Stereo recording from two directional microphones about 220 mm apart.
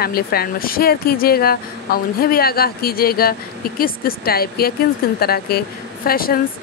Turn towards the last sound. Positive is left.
turn(degrees=40)  # may be behind; listen again after turning